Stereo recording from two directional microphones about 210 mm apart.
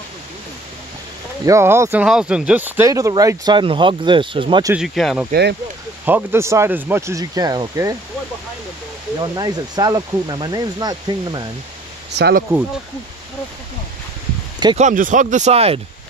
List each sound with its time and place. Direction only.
1.4 s speech: 15° right (ahead or behind)
4.7 s speech: centre (ahead or behind)
5.3 s speech: 55° right (ahead or behind)
6.0 s speech: 10° right (ahead or behind)
9.2 s speech: 20° right (ahead or behind)
12.1 s speech: 55° right (ahead or behind)
14.8 s speech: 35° right (ahead or behind)